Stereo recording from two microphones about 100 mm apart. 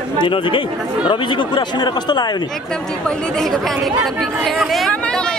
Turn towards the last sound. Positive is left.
turn(degrees=0)  # may be behind; listen again after turning